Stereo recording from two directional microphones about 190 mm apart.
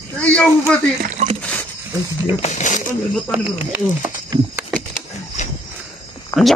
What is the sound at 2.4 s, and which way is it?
Speech, 40° left (ahead or behind).